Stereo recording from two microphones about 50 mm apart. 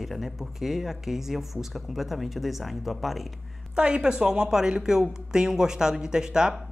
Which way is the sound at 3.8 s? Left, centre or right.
Centre.